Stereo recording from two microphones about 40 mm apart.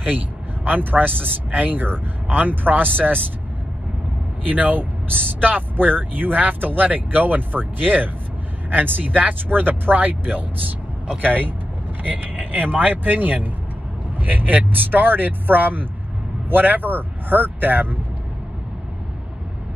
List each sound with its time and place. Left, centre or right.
0.7 s speech: right
4.5 s speech: right
12.0 s speech: right